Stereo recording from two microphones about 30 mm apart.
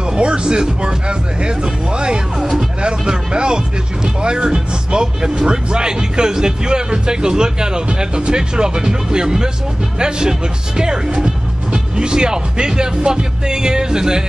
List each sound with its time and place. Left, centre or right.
0.1 s speech: right